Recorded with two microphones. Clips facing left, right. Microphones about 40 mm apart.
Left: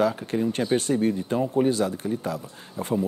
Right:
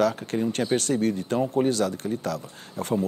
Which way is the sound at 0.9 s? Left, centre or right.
Left.